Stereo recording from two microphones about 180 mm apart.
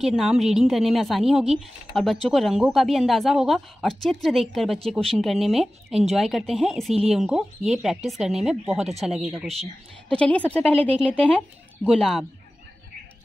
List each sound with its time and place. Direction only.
0.0 s a woman's voice: centre (ahead or behind)
8.7 s speech: 35° right (ahead or behind)
9.0 s a woman's voice: centre (ahead or behind)